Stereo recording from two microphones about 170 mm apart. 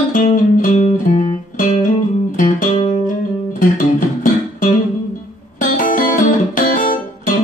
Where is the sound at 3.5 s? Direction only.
55° left (ahead or behind).